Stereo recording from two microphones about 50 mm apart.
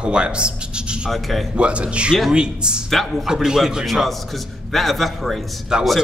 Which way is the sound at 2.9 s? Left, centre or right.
Centre.